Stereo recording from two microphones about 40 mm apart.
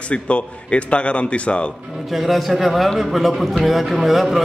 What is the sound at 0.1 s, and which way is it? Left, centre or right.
A man's voice, left.